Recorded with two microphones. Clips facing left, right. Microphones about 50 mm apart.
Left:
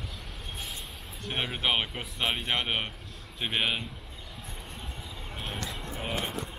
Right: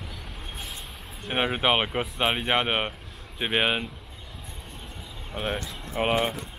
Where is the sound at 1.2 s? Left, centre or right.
Right.